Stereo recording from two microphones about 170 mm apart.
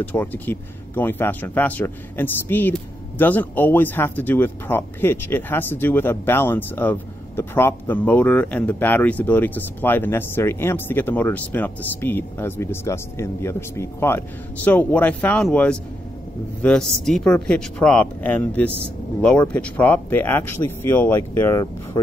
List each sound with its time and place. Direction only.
0.0 s speech: 10° left (ahead or behind)